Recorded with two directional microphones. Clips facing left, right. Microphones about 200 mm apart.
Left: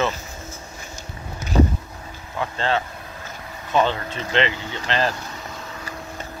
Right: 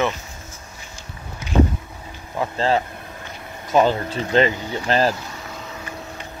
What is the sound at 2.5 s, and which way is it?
Speech, 40° right (ahead or behind).